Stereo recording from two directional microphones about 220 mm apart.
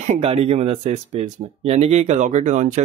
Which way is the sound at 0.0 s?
30° right (ahead or behind).